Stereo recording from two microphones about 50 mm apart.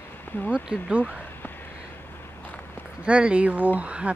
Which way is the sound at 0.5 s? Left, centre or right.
Centre.